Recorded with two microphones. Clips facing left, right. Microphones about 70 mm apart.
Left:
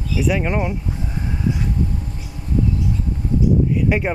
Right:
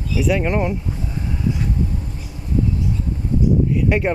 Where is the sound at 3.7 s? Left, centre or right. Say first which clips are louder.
Even; centre.